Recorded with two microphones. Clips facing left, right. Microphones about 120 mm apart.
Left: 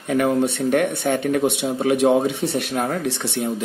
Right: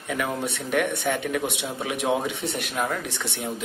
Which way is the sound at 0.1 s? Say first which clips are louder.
Left 9 dB; 45° left (ahead or behind).